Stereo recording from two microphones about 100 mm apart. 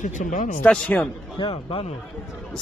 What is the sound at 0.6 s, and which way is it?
Speech, 15° left (ahead or behind).